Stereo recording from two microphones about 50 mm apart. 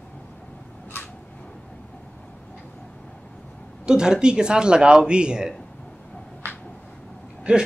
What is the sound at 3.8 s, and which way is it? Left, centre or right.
Speech, centre.